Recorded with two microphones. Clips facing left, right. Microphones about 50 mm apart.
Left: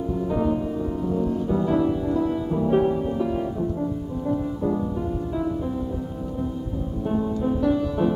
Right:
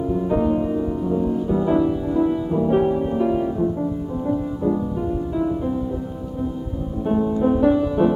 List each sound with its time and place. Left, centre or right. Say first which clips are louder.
0.1 s music: right 3 dB; centre
4.3 s music: right 2 dB; centre
7.1 s music: right 6 dB; centre